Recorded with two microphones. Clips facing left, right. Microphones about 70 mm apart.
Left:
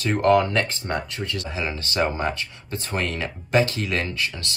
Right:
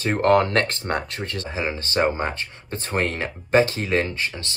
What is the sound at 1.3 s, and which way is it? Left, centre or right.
Speech, right.